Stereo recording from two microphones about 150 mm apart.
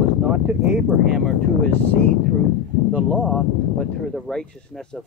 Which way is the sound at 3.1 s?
Centre (ahead or behind).